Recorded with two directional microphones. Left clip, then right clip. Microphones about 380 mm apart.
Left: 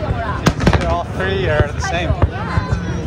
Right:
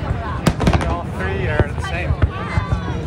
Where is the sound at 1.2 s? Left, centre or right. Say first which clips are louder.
Left 3 dB; left.